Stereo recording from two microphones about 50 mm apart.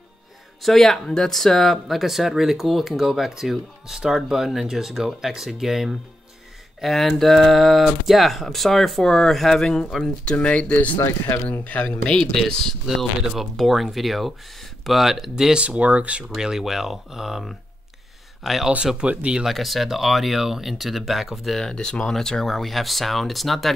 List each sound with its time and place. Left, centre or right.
0.6 s speech: centre
10.3 s speech: left
11.8 s speech: centre
12.8 s speech: centre
15.5 s speech: right
16.3 s speech: centre
19.0 s speech: right
19.4 s speech: centre
21.5 s speech: centre